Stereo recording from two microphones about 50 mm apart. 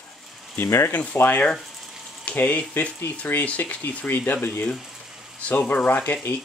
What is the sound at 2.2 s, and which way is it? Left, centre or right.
Frying, left.